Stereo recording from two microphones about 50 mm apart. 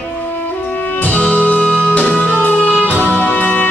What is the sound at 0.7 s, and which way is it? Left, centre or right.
Music, left.